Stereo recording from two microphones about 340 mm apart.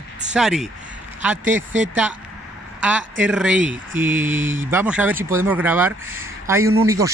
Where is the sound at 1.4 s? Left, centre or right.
Right.